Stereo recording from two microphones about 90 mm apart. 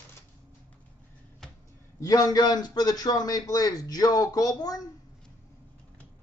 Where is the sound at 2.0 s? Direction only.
40° left (ahead or behind).